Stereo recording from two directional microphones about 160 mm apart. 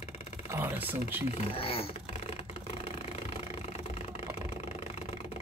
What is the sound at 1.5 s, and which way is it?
Speech, 35° left (ahead or behind).